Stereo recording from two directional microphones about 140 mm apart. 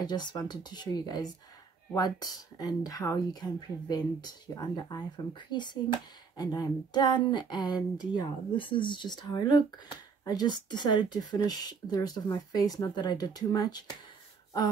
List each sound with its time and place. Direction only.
0.0 s speech: 30° left (ahead or behind)